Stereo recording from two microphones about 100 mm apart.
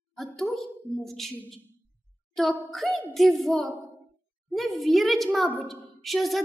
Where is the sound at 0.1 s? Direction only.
5° left (ahead or behind).